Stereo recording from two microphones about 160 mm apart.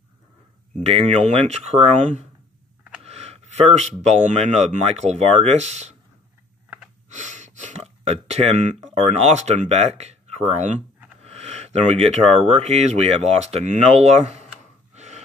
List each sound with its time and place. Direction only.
0.8 s speech: 40° right (ahead or behind)
7.1 s speech: 50° right (ahead or behind)
15.0 s breathing: 45° right (ahead or behind)